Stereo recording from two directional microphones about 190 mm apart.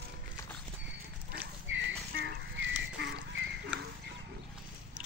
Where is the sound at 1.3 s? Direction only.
65° right (ahead or behind).